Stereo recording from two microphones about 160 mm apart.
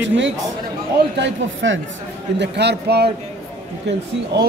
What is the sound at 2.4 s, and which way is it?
Speech, 90° right.